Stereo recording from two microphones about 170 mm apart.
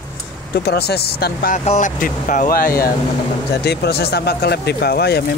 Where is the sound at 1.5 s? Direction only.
45° left (ahead or behind).